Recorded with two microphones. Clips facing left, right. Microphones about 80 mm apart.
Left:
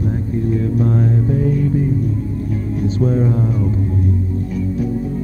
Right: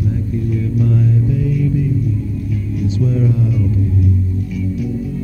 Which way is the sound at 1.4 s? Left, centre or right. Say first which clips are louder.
Left 1 dB; left.